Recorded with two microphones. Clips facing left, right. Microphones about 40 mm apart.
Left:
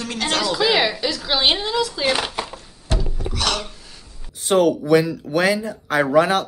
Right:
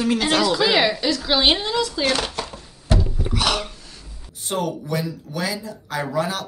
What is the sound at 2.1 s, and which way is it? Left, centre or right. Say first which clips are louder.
Chopping: left 1 dB; centre.